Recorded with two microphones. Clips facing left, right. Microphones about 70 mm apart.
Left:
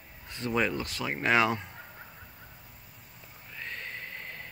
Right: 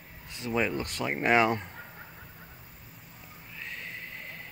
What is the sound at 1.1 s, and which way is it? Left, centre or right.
Speech, right.